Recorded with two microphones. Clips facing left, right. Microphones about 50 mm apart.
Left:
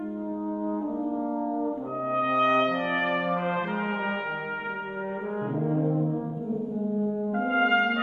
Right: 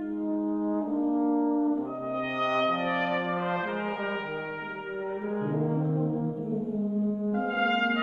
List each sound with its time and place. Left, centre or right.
0.7 s brass instrument: centre
2.2 s brass instrument: left
7.3 s music: left
7.7 s music: centre